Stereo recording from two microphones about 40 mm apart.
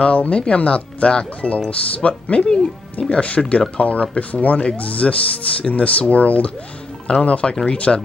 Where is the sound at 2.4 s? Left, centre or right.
Centre.